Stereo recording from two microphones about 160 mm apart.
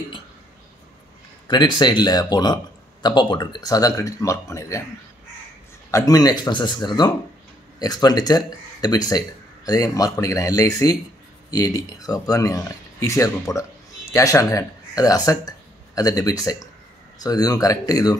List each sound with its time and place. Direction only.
1.5 s speech: 30° left (ahead or behind)
5.9 s speech: 20° left (ahead or behind)